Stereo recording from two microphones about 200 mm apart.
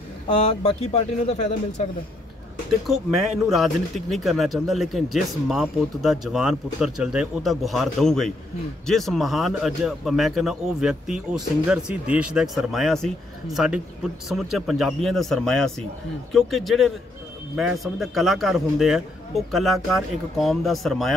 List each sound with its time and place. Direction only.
0.3 s speech: 30° left (ahead or behind)
3.4 s speech: centre (ahead or behind)